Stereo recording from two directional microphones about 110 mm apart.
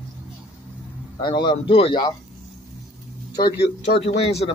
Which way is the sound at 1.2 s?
45° left (ahead or behind).